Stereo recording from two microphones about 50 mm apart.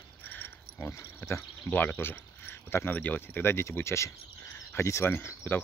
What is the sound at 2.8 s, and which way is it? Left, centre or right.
Speech, left.